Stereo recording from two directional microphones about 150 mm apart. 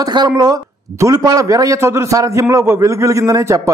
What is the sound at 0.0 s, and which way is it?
A man's voice, 30° right (ahead or behind).